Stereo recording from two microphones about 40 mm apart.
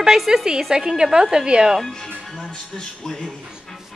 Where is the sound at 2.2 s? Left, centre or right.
Centre.